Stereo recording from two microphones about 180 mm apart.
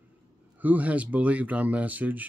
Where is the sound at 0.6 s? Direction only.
10° right (ahead or behind).